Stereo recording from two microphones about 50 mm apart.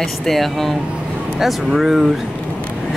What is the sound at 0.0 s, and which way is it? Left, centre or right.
Speech, centre.